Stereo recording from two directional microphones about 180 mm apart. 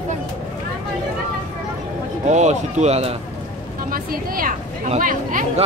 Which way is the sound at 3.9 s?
55° right (ahead or behind).